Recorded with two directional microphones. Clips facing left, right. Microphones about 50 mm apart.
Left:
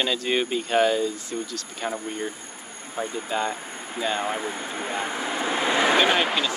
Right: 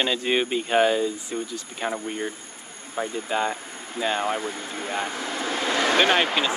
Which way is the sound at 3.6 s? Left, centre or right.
Centre.